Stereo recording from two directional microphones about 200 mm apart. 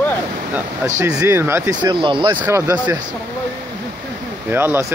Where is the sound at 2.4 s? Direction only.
10° right (ahead or behind).